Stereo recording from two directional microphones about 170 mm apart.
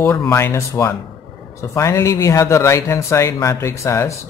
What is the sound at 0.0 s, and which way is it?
Speech, 15° left (ahead or behind).